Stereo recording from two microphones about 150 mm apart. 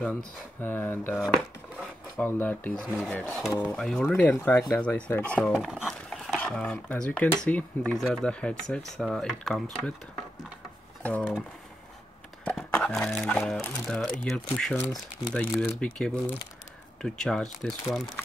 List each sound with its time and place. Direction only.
0.0 s speech: 10° left (ahead or behind)
1.2 s chopping: centre (ahead or behind)
2.2 s speech: 10° left (ahead or behind)
5.5 s a sound: 5° right (ahead or behind)
6.4 s speech: 10° left (ahead or behind)
11.0 s speech: 10° left (ahead or behind)
12.4 s speech: 10° left (ahead or behind)
14.8 s speech: 25° left (ahead or behind)
15.6 s speech: 10° left (ahead or behind)